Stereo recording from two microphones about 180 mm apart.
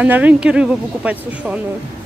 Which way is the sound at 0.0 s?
10° right (ahead or behind).